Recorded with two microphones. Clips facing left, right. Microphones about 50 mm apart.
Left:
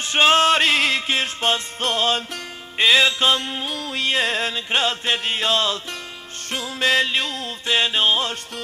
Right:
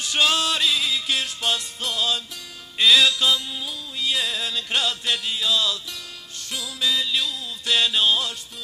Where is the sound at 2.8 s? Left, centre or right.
Left.